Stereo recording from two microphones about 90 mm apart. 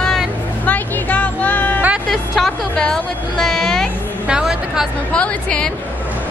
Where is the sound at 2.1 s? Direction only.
5° left (ahead or behind).